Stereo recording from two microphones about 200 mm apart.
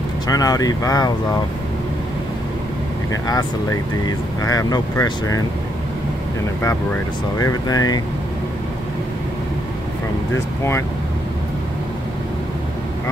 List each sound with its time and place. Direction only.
0.3 s speech: 20° left (ahead or behind)
3.1 s speech: 20° left (ahead or behind)
7.3 s speech: 20° left (ahead or behind)